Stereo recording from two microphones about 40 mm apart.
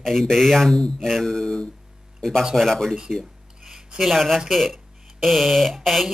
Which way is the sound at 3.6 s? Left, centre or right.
Centre.